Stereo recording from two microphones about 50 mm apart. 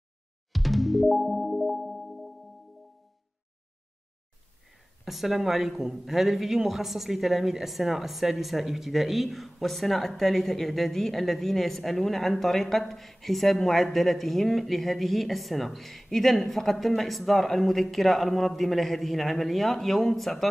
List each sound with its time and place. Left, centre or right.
0.5 s music: centre
4.6 s a man's voice: centre